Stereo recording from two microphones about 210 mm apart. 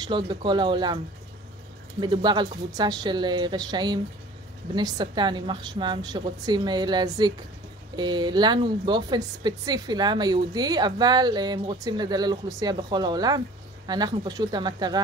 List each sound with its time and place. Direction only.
0.0 s a woman's voice: 20° right (ahead or behind)
2.0 s a woman's voice: 20° right (ahead or behind)